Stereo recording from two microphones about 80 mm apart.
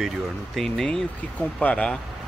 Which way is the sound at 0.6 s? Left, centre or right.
Centre.